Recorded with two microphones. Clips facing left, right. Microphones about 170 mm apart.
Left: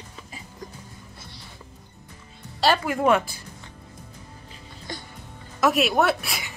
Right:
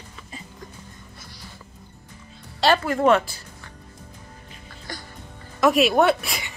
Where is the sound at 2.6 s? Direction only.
10° left (ahead or behind).